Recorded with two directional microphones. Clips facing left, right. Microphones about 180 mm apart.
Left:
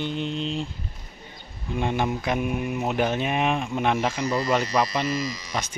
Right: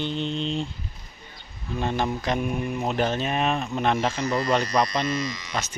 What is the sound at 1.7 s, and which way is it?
Speech, 15° left (ahead or behind).